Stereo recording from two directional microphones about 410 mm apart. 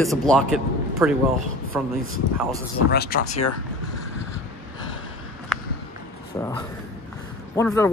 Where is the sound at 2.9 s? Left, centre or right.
Left.